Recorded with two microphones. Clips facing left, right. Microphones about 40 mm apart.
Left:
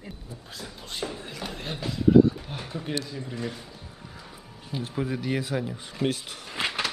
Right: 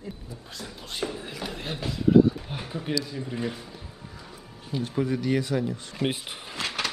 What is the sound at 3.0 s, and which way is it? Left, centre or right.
Speech, centre.